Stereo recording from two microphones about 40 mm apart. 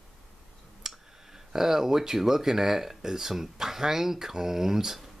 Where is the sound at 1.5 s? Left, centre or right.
Centre.